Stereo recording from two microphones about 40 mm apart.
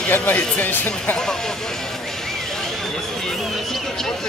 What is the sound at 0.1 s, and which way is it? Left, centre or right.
Speech, left.